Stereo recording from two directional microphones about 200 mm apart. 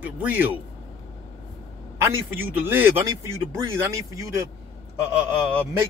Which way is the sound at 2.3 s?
10° right (ahead or behind).